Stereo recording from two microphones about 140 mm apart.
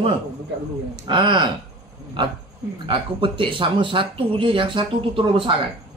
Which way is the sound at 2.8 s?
40° right (ahead or behind).